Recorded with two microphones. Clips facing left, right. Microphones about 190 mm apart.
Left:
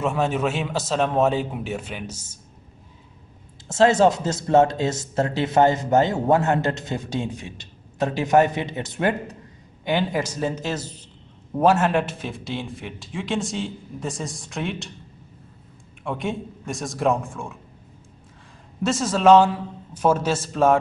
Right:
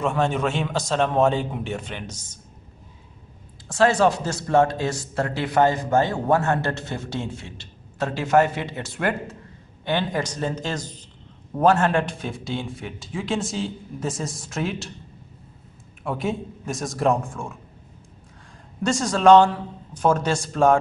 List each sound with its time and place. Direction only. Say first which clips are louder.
0.0 s a man's voice: even; 5° left (ahead or behind)
3.6 s a man's voice: left 2 dB; 25° left (ahead or behind); by 14.9 s centre (ahead or behind)
16.0 s a man's voice: right 1 dB; centre (ahead or behind)
18.8 s a man's voice: even; centre (ahead or behind)